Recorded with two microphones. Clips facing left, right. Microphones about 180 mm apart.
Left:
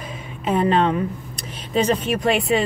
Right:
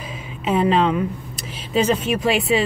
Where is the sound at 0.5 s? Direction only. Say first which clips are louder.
Right 1 dB; centre (ahead or behind).